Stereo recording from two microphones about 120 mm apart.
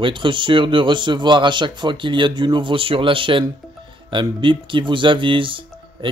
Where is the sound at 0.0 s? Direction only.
45° right (ahead or behind).